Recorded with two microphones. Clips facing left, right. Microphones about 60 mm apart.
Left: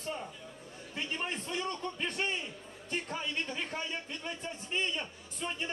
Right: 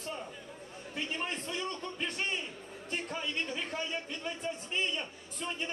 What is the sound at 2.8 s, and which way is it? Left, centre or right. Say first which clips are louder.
Speech: even; centre.